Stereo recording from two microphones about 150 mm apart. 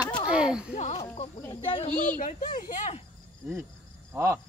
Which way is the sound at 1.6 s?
35° left (ahead or behind).